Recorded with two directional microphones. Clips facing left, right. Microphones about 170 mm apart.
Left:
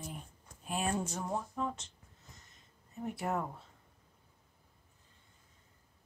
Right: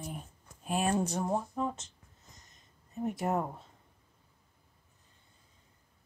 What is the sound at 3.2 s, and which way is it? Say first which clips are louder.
Speech: right 3 dB; 25° right (ahead or behind).